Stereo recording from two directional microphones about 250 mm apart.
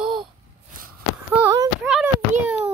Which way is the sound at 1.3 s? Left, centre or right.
Centre.